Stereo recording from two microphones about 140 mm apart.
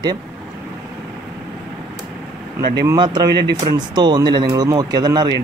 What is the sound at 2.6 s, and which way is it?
Speech, 30° right (ahead or behind).